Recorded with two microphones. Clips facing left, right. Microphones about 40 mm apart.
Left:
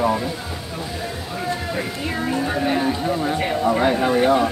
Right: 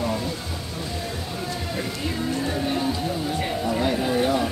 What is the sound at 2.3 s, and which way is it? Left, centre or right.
Speech, left.